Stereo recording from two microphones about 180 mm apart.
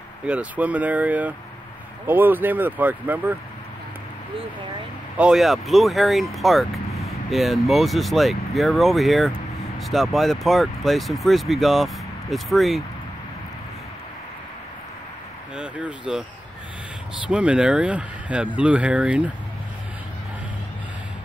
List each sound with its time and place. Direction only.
0.3 s speech: 5° right (ahead or behind)
5.1 s speech: 5° right (ahead or behind)
15.5 s speech: 5° right (ahead or behind)
17.3 s speech: 5° right (ahead or behind)